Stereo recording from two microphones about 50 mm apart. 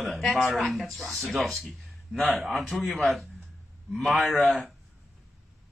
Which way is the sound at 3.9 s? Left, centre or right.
Centre.